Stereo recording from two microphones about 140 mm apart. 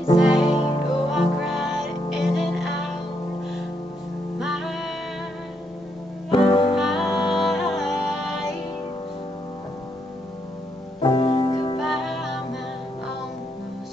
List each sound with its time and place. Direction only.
0.2 s music: 5° right (ahead or behind)
0.5 s music: 35° left (ahead or behind)
1.1 s music: centre (ahead or behind)
4.4 s music: centre (ahead or behind)
6.3 s music: 35° left (ahead or behind)
6.8 s music: centre (ahead or behind)
11.0 s music: 35° left (ahead or behind)
11.8 s music: centre (ahead or behind)